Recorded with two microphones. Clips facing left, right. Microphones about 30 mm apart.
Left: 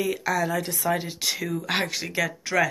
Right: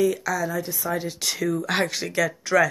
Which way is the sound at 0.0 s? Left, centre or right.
Left.